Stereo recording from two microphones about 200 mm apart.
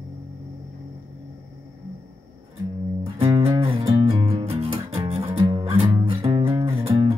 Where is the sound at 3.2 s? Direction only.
20° right (ahead or behind).